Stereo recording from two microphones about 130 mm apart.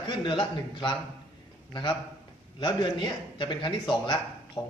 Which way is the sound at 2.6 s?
35° left (ahead or behind).